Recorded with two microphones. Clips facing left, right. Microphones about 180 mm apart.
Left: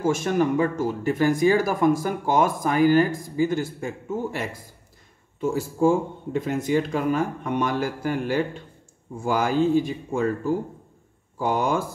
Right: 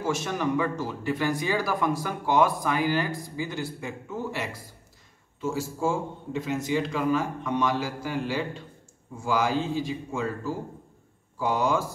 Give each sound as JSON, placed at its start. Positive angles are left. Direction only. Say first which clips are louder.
{"t": 0.0, "sound": "speech", "louder": "left 6 dB", "side_deg": 50}